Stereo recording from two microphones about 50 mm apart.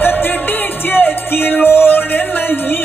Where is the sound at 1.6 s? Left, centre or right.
Left.